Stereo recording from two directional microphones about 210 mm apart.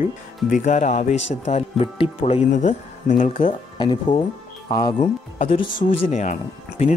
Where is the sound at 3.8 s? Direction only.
25° left (ahead or behind).